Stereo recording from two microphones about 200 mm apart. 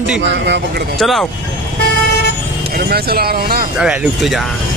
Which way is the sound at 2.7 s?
50° right (ahead or behind).